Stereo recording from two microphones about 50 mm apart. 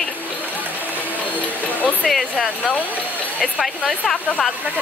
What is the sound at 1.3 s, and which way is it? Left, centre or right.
Music, left.